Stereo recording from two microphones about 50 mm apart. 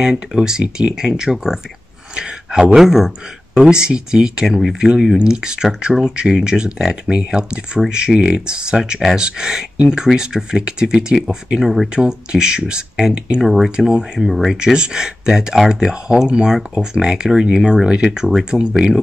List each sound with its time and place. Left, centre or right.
0.0 s speech: centre
4.5 s speech: centre
4.7 s speech: centre
13.4 s speech: centre
13.7 s speech: centre
14.2 s speech: centre
14.6 s speech: centre